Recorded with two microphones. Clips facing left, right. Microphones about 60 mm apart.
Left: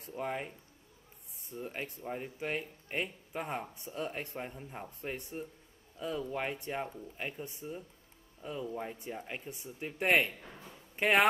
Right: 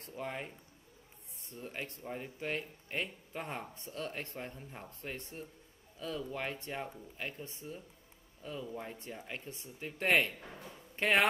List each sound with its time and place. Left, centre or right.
0.0 s speech: centre
1.5 s speech: centre